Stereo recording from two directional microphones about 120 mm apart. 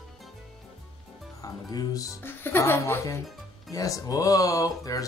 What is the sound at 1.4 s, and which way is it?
Speech, 30° left (ahead or behind).